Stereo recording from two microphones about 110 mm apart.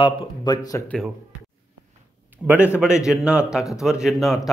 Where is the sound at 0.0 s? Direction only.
40° left (ahead or behind).